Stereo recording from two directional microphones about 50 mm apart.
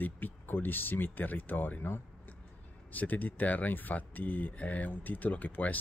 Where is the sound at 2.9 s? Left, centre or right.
Left.